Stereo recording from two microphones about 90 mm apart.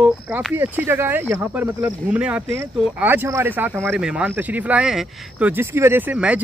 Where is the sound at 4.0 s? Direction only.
10° right (ahead or behind); by 6.1 s 25° right (ahead or behind).